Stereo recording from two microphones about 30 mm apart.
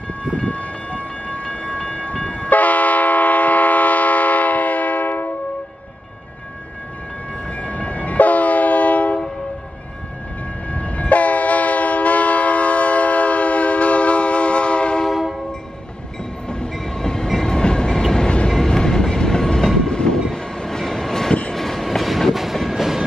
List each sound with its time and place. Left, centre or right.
0.4 s train: left
2.5 s train: left
7.5 s train: left
10.7 s train: left
15.0 s train: centre
16.7 s train: left; by 22.8 s centre